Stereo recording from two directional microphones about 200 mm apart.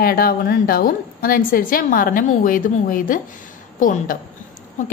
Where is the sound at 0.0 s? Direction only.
50° left (ahead or behind).